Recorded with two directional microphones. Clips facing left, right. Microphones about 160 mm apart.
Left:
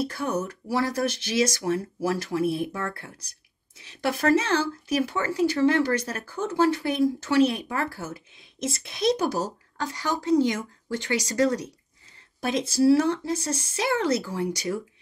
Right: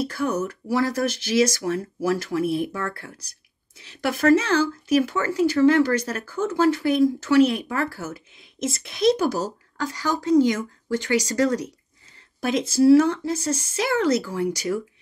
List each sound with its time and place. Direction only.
0.0 s speech: 25° left (ahead or behind)